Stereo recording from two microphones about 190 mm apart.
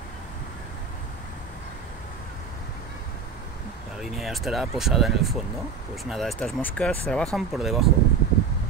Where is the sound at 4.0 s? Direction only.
Centre (ahead or behind).